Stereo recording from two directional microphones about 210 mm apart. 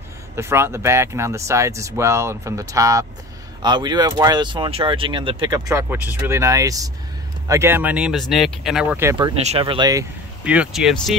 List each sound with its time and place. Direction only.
0.4 s speech: 10° right (ahead or behind)
9.1 s speech: 25° right (ahead or behind)
10.4 s speech: 5° right (ahead or behind)